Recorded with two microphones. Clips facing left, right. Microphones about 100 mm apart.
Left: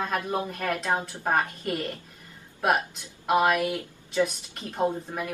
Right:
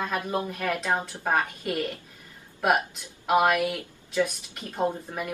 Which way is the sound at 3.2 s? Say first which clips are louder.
Right 1 dB; centre (ahead or behind).